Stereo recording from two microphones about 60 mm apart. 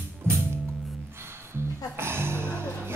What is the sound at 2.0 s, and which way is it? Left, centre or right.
Music, right.